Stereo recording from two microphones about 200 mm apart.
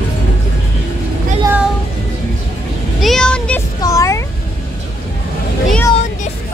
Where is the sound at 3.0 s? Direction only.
Centre (ahead or behind).